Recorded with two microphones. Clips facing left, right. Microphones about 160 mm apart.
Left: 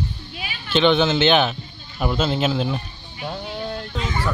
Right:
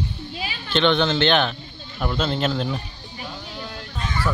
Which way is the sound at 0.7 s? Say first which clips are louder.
Left 2 dB; 5° left (ahead or behind).